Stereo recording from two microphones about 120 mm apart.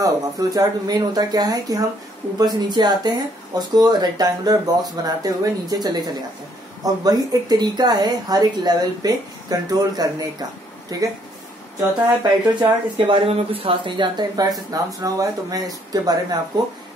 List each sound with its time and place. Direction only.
0.0 s speech: 30° right (ahead or behind)
12.2 s speech: 40° right (ahead or behind)